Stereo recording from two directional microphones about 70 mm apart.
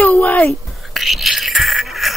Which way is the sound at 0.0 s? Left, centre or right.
Left.